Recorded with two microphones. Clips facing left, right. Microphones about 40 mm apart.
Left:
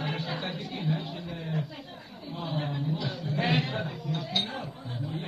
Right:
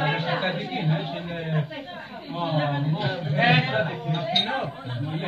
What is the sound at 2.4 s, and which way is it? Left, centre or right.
A man's voice, right.